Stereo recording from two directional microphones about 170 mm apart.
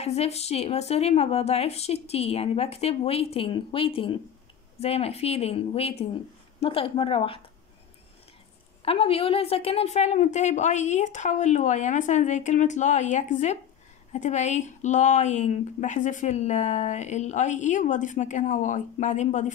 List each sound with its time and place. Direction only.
0.0 s a woman's voice: 40° left (ahead or behind)
8.8 s speech: 35° left (ahead or behind)